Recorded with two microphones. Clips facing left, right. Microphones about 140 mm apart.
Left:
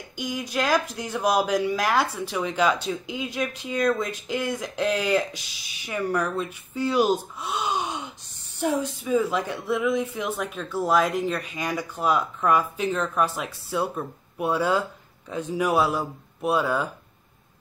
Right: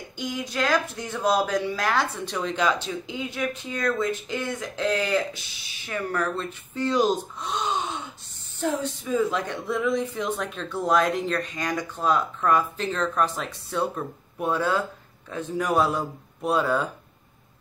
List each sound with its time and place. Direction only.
0.2 s a man's voice: 15° left (ahead or behind)